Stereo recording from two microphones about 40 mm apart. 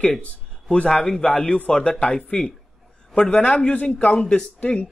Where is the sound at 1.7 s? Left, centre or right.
Left.